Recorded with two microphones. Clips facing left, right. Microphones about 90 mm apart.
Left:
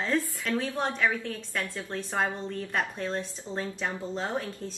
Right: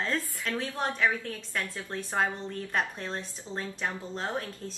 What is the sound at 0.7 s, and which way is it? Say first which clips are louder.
A woman's voice: left 1 dB; 5° right (ahead or behind).